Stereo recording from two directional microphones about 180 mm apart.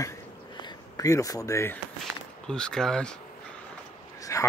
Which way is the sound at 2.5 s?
5° left (ahead or behind).